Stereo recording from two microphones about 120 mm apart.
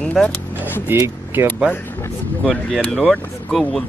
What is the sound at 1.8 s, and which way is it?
Speech, 15° left (ahead or behind).